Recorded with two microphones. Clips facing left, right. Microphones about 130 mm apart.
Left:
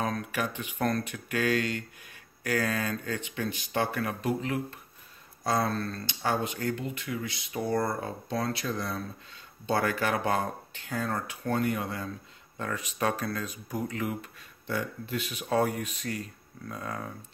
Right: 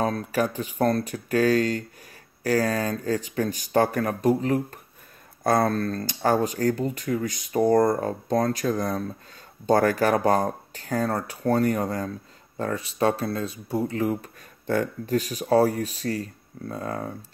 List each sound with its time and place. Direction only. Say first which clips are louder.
0.0 s speech: right 7 dB; 35° right (ahead or behind)
5.4 s speech: right 6 dB; 50° right (ahead or behind); by 14.3 s 35° right (ahead or behind)
14.7 s speech: right 9 dB; 45° right (ahead or behind)